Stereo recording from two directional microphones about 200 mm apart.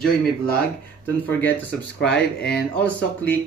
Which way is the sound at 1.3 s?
10° left (ahead or behind).